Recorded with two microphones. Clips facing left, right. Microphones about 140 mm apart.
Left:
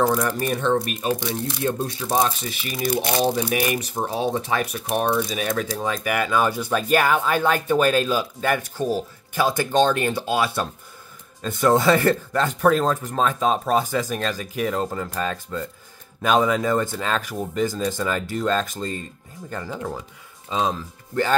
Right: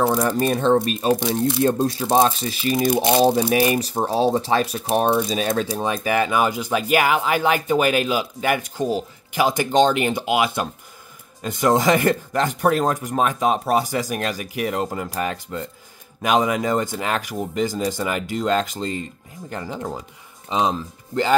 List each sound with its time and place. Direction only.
0.2 s speech: 30° right (ahead or behind)
2.8 s speech: 20° right (ahead or behind)